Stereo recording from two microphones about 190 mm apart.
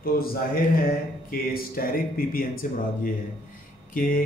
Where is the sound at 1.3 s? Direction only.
50° left (ahead or behind).